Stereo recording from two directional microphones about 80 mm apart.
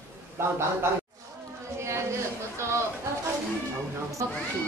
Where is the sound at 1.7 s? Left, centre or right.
Right.